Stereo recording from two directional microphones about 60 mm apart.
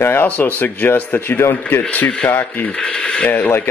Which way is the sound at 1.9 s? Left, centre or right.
Left.